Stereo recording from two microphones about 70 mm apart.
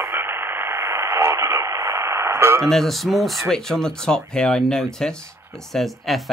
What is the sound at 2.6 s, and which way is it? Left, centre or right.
Speech, centre.